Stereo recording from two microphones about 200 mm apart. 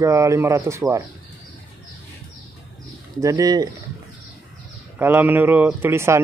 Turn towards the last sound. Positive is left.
turn(degrees=-15)  # may be behind; listen again after turning